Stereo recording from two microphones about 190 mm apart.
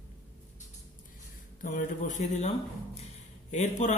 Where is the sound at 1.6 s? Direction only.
40° left (ahead or behind).